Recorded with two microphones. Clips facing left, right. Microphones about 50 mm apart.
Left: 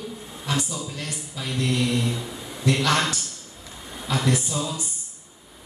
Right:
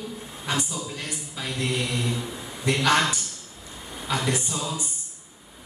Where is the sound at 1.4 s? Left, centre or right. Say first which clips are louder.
Left 3 dB; centre.